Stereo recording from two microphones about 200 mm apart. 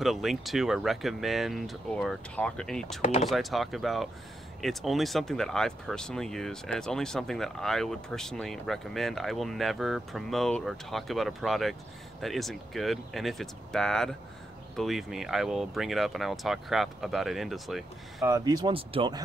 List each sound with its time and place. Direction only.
0.0 s speech: centre (ahead or behind)
3.0 s speech: 35° left (ahead or behind)
3.3 s speech: centre (ahead or behind)
18.2 s speech: 15° right (ahead or behind)